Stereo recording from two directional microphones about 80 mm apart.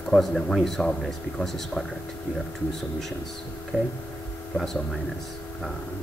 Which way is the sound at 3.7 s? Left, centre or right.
Centre.